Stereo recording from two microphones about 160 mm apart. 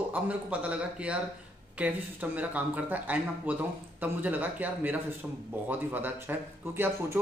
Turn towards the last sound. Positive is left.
turn(degrees=-15)  # may be behind; listen again after turning